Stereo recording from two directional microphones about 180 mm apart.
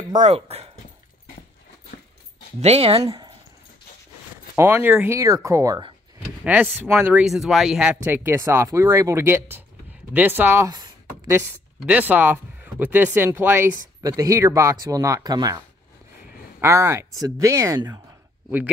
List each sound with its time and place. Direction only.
0.2 s speech: 35° right (ahead or behind)
2.6 s speech: 35° right (ahead or behind)
3.0 s speech: 20° right (ahead or behind)
4.6 s speech: 10° right (ahead or behind)
6.4 s speech: 10° right (ahead or behind)
16.6 s speech: 15° right (ahead or behind)